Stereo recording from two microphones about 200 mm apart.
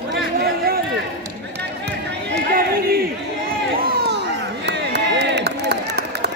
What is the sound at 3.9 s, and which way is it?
Crowd, 60° right (ahead or behind).